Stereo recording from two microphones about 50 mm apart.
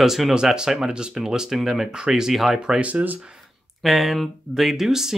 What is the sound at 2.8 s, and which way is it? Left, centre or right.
Speech, right.